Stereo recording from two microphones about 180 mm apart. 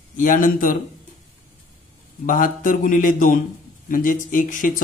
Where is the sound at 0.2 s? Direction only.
45° left (ahead or behind).